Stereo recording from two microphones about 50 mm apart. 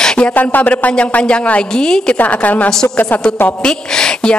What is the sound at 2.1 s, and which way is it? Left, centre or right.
Speech, left.